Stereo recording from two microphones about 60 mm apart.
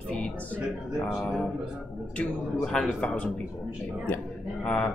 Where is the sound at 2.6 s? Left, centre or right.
Centre.